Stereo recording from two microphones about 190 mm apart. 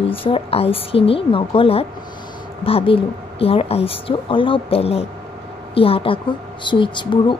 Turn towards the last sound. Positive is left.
turn(degrees=25)  # may be behind; listen again after turning